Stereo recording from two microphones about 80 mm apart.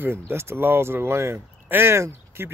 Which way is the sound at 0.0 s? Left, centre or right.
Right.